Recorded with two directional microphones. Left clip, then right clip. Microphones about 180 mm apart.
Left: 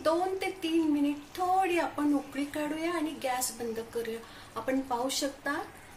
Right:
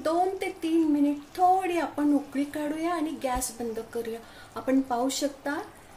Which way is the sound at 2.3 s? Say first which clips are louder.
Right 3 dB; 60° right (ahead or behind).